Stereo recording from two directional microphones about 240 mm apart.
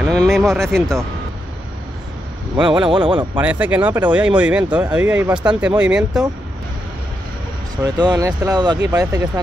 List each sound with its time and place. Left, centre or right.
0.0 s speech: centre
2.5 s speech: centre
3.3 s speech: centre
7.8 s speech: centre